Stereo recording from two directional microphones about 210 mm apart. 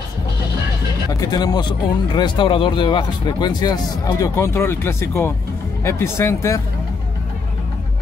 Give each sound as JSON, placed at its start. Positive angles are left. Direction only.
{"t": 1.2, "sound": "speech", "side_deg": 20}